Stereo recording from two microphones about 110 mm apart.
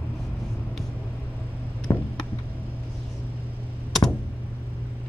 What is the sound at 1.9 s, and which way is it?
Tick, 30° left (ahead or behind).